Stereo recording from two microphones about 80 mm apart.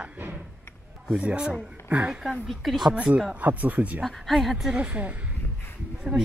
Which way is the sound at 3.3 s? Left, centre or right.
Right.